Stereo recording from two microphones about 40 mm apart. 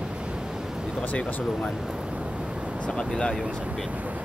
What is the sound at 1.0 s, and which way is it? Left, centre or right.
Speech, left.